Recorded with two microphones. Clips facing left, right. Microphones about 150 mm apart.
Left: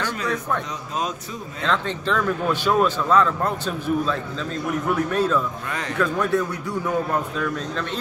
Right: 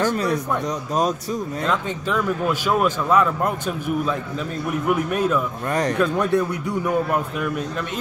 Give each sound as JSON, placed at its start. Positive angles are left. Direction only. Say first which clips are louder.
{"t": 0.0, "sound": "speech", "louder": "right 6 dB", "side_deg": -40}
{"t": 1.7, "sound": "a man's voice", "louder": "left 2 dB", "side_deg": -10}
{"t": 5.7, "sound": "a man's voice", "louder": "right 8 dB", "side_deg": -40}
{"t": 5.9, "sound": "a man's voice", "louder": "left 2 dB", "side_deg": -20}